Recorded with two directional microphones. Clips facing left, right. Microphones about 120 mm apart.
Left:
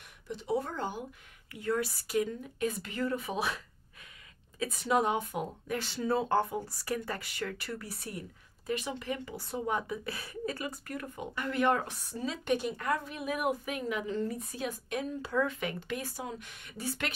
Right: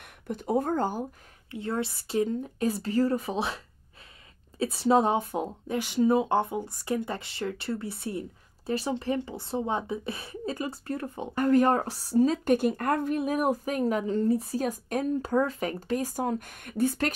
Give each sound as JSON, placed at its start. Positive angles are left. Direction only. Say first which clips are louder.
{"t": 0.0, "sound": "speech", "louder": "right 6 dB", "side_deg": -50}
{"t": 1.5, "sound": "a woman's voice", "louder": "right 1 dB", "side_deg": -25}
{"t": 11.3, "sound": "speech", "louder": "right 7 dB", "side_deg": -40}
{"t": 13.2, "sound": "speech", "louder": "right 6 dB", "side_deg": -40}
{"t": 14.6, "sound": "speech", "louder": "right 6 dB", "side_deg": -45}